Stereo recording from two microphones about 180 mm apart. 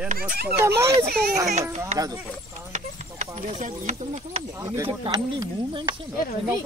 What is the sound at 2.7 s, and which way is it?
Speech, 40° right (ahead or behind).